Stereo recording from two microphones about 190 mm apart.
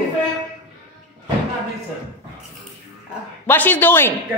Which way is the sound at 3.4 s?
10° left (ahead or behind).